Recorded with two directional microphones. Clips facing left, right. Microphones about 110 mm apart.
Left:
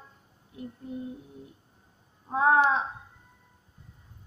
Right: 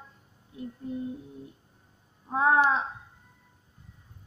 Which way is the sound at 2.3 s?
20° left (ahead or behind).